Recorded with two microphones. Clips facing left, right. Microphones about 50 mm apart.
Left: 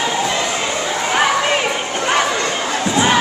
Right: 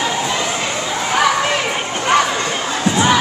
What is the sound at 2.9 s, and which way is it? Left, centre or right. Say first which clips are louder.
Crowd: even; left.